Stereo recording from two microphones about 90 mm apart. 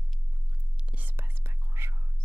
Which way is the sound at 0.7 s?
15° right (ahead or behind).